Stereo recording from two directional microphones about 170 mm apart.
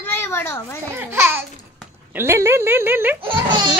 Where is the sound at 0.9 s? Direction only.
15° right (ahead or behind).